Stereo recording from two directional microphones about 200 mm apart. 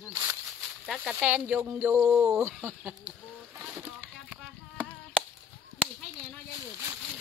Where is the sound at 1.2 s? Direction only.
5° right (ahead or behind).